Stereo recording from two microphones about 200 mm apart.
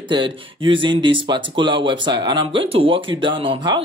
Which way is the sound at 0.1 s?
25° right (ahead or behind).